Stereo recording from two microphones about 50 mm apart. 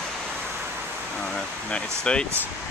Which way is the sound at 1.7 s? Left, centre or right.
Left.